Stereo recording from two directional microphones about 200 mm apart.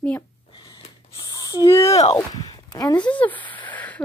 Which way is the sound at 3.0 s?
10° left (ahead or behind).